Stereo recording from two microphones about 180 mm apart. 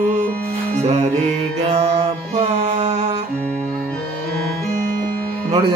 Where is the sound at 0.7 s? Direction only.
40° right (ahead or behind).